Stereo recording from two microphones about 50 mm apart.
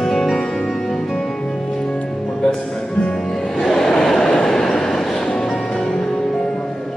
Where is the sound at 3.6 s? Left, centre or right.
Centre.